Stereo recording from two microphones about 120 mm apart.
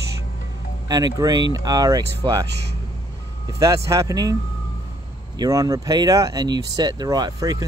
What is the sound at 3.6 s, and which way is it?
Speech, 25° right (ahead or behind).